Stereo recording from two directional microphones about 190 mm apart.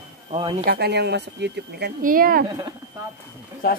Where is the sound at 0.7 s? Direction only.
60° right (ahead or behind).